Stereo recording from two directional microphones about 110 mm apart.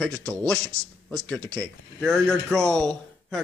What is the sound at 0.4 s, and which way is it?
Speech, 30° right (ahead or behind).